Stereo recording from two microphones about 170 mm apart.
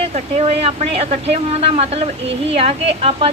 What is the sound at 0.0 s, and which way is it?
Speech, 40° right (ahead or behind).